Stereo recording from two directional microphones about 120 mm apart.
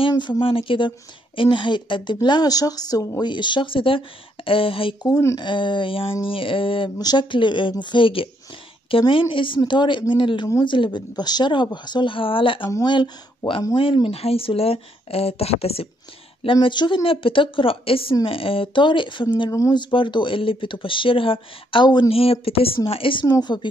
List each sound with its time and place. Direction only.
0.4 s speech: 50° left (ahead or behind)
5.0 s speech: 25° left (ahead or behind)
5.4 s speech: 40° left (ahead or behind)
7.0 s speech: 35° left (ahead or behind)
14.1 s speech: 55° left (ahead or behind)
16.6 s speech: 40° left (ahead or behind)
22.1 s speech: 55° left (ahead or behind)
23.2 s speech: 35° left (ahead or behind)